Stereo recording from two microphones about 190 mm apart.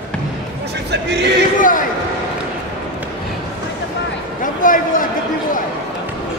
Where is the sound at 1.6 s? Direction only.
45° left (ahead or behind).